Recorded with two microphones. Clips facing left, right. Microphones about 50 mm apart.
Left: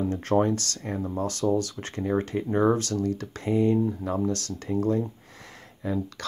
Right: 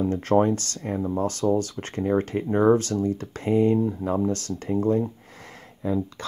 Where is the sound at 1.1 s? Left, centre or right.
Right.